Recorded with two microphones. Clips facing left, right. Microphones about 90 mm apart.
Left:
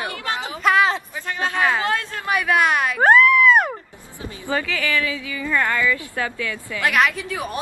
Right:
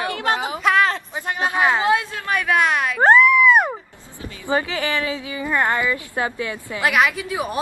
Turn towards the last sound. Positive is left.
turn(degrees=-15)  # may be behind; listen again after turning